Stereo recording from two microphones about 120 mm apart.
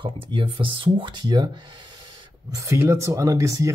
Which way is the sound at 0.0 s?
45° right (ahead or behind).